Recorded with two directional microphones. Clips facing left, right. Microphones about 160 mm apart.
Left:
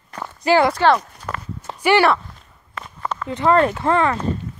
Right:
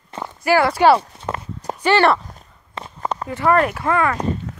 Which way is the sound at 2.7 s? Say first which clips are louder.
Right 2 dB; 30° right (ahead or behind).